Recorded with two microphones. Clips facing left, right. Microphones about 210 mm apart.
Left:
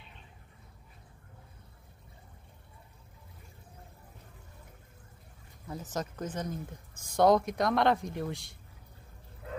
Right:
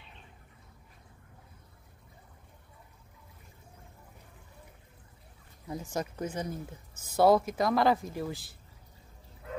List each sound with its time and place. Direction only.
5.7 s a woman's voice: 10° right (ahead or behind)